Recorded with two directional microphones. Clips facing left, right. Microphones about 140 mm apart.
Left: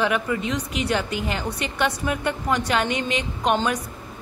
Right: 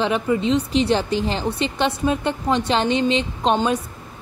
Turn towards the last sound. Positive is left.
turn(degrees=-25)  # may be behind; listen again after turning